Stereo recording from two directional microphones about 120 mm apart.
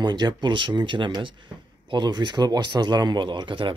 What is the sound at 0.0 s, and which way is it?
Speech, 35° right (ahead or behind).